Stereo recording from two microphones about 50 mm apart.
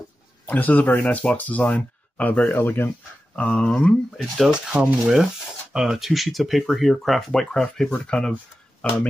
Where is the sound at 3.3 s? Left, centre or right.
Centre.